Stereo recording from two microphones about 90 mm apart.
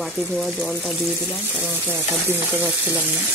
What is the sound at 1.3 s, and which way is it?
Speech, 15° right (ahead or behind).